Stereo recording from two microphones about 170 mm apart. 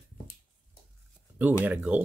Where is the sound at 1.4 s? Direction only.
10° right (ahead or behind).